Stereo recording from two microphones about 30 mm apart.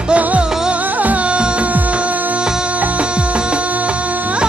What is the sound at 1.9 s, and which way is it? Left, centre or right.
Music, right.